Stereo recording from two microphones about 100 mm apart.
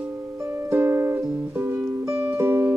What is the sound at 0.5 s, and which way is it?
Music, 25° right (ahead or behind).